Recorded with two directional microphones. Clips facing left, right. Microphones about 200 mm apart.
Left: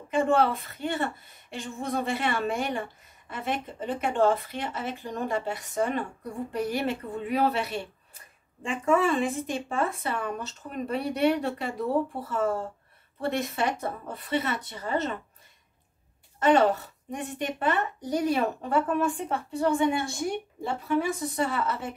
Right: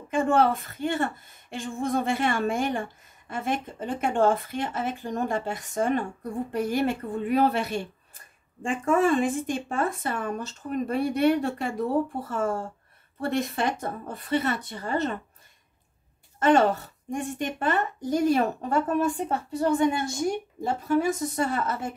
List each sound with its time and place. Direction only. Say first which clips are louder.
0.1 s a woman's voice: right 1 dB; 50° right (ahead or behind)
13.7 s a woman's voice: right 1 dB; 45° right (ahead or behind)
16.3 s a woman's voice: right 1 dB; 45° right (ahead or behind)